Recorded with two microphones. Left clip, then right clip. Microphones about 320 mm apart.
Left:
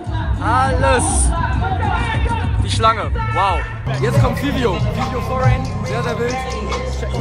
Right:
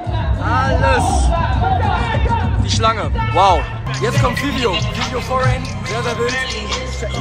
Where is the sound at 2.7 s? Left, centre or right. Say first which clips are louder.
Left 1 dB; centre.